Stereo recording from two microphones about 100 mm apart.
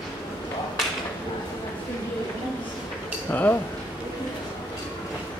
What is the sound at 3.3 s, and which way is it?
Speech, 20° left (ahead or behind).